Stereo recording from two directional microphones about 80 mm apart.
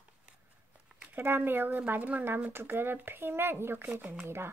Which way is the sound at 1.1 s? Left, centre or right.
Right.